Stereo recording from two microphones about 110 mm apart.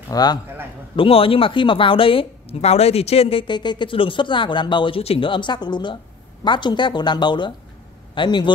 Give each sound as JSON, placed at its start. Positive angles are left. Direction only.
{"t": 0.1, "sound": "a man's voice", "side_deg": 40}
{"t": 0.9, "sound": "a woman's voice", "side_deg": 55}
{"t": 3.4, "sound": "speech", "side_deg": 45}